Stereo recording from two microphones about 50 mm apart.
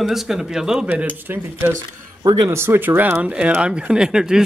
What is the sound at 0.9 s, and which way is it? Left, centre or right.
Speech, right.